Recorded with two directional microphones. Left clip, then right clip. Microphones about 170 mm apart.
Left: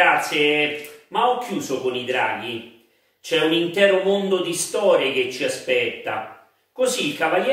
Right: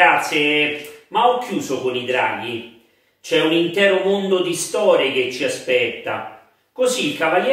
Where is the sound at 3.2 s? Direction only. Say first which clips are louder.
Right 3 dB; 15° left (ahead or behind).